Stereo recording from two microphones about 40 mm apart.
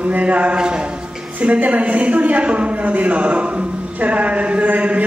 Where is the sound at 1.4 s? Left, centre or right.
Right.